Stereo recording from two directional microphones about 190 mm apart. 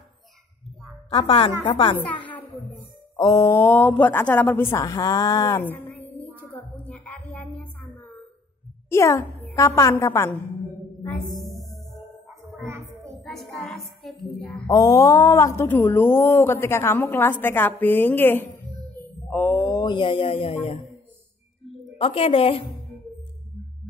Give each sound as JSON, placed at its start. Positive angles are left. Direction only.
{"t": 1.1, "sound": "a woman's voice", "side_deg": 30}
{"t": 6.3, "sound": "a sound", "side_deg": 5}
{"t": 8.8, "sound": "a child's voice", "side_deg": 15}
{"t": 11.3, "sound": "music", "side_deg": 0}
{"t": 12.6, "sound": "a sound", "side_deg": -15}
{"t": 13.2, "sound": "speech", "side_deg": 0}
{"t": 14.7, "sound": "a woman's voice", "side_deg": 15}
{"t": 21.9, "sound": "a woman's voice", "side_deg": 30}